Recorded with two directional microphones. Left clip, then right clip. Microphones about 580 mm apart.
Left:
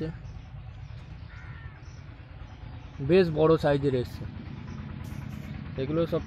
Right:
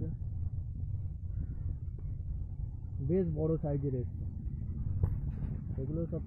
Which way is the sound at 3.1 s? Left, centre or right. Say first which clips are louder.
Left 12 dB; centre.